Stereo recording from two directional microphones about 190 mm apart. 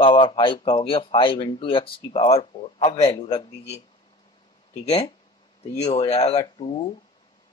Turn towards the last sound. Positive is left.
turn(degrees=30)  # may be behind; listen again after turning